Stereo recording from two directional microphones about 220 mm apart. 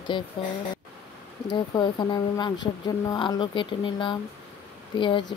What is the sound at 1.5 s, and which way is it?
Speech, 20° left (ahead or behind).